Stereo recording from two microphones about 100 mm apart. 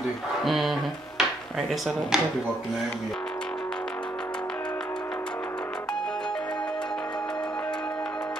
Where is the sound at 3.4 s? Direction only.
10° left (ahead or behind).